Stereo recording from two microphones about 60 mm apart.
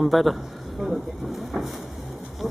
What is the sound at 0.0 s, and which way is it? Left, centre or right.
Speech, centre.